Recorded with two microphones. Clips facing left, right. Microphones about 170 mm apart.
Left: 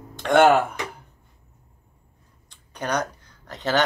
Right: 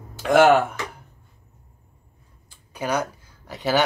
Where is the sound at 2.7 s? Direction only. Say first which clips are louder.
Right 1 dB; 5° right (ahead or behind).